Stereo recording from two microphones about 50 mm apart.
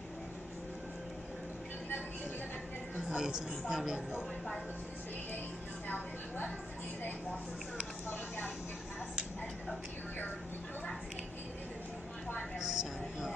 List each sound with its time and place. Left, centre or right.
3.0 s a woman's voice: centre
5.9 s a woman's voice: left
12.5 s a woman's voice: centre